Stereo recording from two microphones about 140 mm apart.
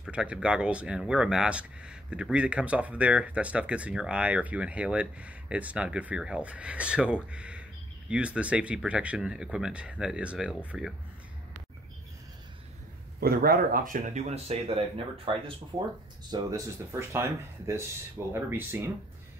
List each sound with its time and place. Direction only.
0.0 s speech: 10° right (ahead or behind)
13.2 s speech: 90° right; by 15.5 s 40° right (ahead or behind)
16.3 s speech: 25° right (ahead or behind)